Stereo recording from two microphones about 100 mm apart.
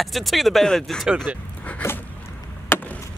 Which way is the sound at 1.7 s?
20° left (ahead or behind).